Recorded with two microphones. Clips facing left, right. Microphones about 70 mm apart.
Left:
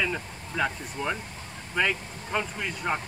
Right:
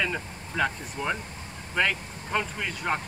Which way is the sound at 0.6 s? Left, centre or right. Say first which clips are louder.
Right 1 dB; centre.